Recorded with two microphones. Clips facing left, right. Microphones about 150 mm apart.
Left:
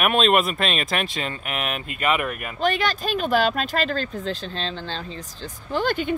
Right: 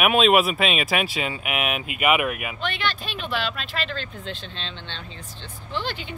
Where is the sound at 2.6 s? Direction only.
40° left (ahead or behind).